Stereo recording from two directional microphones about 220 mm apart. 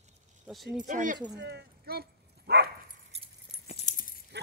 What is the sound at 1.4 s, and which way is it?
Bow-wow, 50° right (ahead or behind).